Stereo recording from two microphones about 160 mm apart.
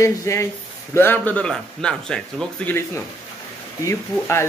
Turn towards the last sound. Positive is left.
turn(degrees=15)  # may be behind; listen again after turning